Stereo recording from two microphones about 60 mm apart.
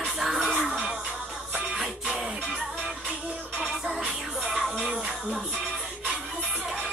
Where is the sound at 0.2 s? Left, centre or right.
Centre.